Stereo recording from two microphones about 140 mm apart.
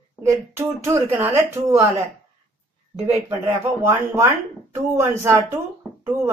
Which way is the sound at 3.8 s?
20° right (ahead or behind).